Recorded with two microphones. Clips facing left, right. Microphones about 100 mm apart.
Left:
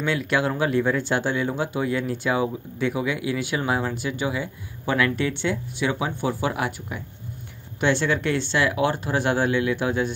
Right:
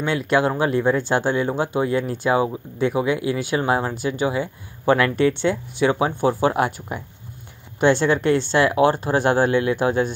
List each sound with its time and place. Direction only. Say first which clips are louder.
0.0 s speech: right 4 dB; 25° right (ahead or behind)